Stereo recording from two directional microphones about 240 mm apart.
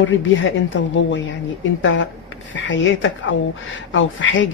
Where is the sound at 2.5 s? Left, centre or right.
Left.